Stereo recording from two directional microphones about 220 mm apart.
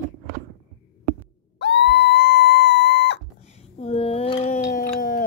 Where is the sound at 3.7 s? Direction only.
30° left (ahead or behind).